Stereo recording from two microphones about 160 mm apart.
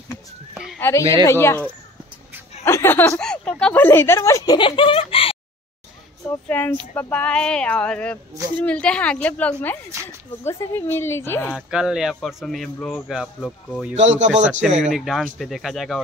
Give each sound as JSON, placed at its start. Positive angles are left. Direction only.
{"t": 0.7, "sound": "speech", "side_deg": 15}
{"t": 4.6, "sound": "speech", "side_deg": 35}
{"t": 6.5, "sound": "speech", "side_deg": 10}
{"t": 11.5, "sound": "speech", "side_deg": -5}
{"t": 13.9, "sound": "speech", "side_deg": -45}
{"t": 14.8, "sound": "speech", "side_deg": 0}